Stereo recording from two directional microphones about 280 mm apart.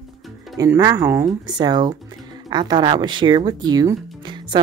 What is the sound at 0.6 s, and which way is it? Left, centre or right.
Speech, centre.